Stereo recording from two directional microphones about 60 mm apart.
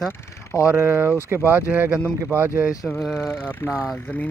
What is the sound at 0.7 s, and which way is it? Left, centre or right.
Speech, right.